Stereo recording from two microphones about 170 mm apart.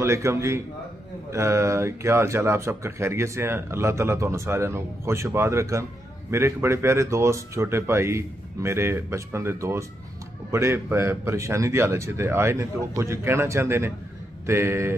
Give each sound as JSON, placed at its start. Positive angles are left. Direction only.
{"t": 0.0, "sound": "speech", "side_deg": -15}